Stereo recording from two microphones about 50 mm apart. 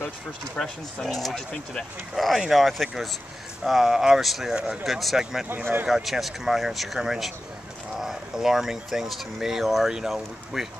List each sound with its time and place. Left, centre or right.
0.6 s speech: centre
1.0 s speech: centre
1.5 s speech: centre
2.1 s speech: centre
5.5 s speech: right
5.9 s speech: centre